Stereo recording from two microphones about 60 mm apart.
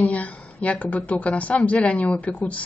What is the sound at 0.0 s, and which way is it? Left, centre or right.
Speech, left.